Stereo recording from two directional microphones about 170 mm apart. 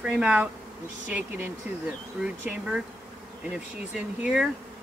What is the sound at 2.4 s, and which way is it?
Speech, 5° right (ahead or behind).